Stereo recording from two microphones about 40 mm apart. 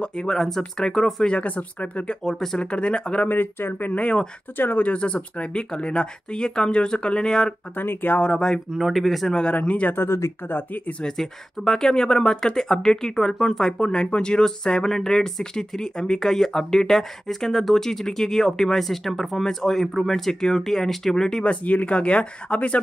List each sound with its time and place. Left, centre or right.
0.0 s a sound: left
0.4 s speech: centre
1.2 s speech: left
1.5 s speech: left
2.2 s speech: centre
2.6 s speech: left
3.3 s speech: left
4.8 s speech: left
7.7 s speech: left
8.2 s speech: centre
8.7 s speech: centre
9.5 s speech: left
11.1 s speech: centre
21.5 s speech: left